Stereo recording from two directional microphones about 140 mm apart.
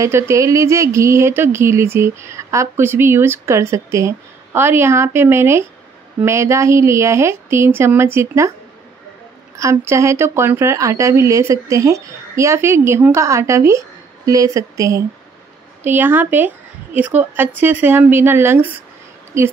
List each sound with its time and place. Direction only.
0.0 s speech: 20° right (ahead or behind)
9.6 s speech: 20° right (ahead or behind)